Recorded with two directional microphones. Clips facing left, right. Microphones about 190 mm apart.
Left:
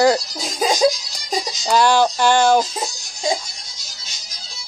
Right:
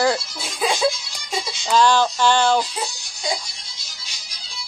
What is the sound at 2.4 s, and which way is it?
Speech, 40° left (ahead or behind).